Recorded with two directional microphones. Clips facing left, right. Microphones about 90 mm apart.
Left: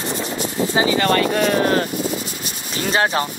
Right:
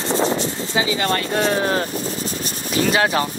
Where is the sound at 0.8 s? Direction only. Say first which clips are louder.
Left 3 dB; 40° left (ahead or behind).